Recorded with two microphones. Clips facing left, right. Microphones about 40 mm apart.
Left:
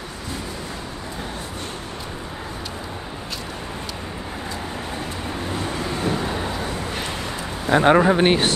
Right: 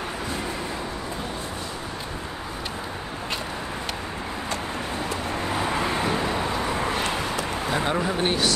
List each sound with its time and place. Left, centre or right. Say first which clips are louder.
5.5 s vehicle: right 3 dB; right
6.5 s vehicle: right 2 dB; centre
7.7 s speech: left 11 dB; left